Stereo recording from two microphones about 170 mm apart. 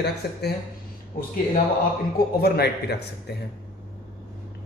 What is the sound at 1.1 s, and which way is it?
A man's voice, 55° left (ahead or behind).